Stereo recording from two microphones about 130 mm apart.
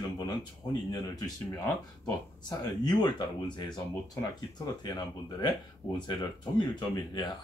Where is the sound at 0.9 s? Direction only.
30° left (ahead or behind).